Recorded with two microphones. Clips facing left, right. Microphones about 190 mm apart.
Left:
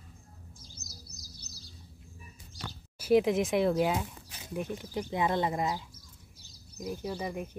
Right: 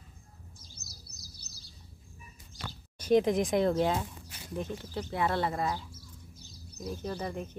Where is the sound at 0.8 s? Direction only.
60° right (ahead or behind).